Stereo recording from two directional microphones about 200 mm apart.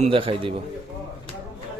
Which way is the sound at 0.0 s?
25° right (ahead or behind).